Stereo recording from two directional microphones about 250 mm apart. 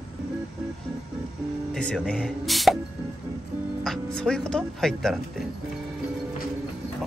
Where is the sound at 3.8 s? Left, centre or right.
Centre.